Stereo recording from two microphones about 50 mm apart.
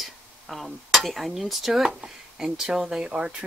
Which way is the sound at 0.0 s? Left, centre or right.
Centre.